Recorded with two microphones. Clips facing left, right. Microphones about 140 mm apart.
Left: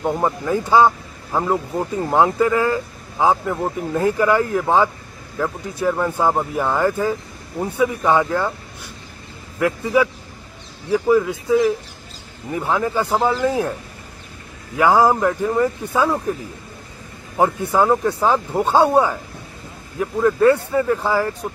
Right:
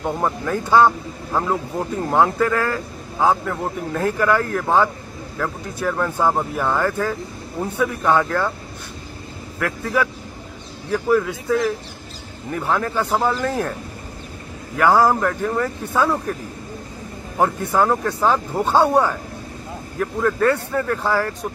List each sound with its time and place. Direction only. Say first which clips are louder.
0.0 s speech: left 2 dB; 10° left (ahead or behind)
9.6 s speech: left 4 dB; 15° left (ahead or behind)
12.5 s speech: left 1 dB; 10° left (ahead or behind)
14.8 s speech: left 1 dB; 10° left (ahead or behind)
17.4 s speech: left 1 dB; 10° left (ahead or behind)